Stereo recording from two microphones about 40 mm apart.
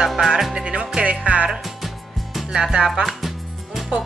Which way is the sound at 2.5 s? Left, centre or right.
Centre.